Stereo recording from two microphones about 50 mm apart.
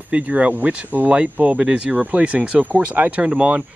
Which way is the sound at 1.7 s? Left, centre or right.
Centre.